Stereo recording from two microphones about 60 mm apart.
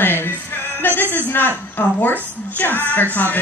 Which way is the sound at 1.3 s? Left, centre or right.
Left.